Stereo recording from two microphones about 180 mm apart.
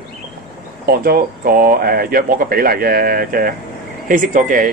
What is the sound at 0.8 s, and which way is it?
Speech, 55° right (ahead or behind).